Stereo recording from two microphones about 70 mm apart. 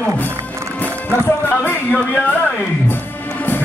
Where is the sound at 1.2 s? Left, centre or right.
Left.